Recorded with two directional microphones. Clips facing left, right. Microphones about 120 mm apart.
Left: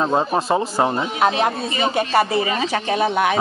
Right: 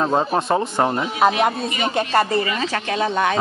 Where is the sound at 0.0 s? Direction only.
Centre (ahead or behind).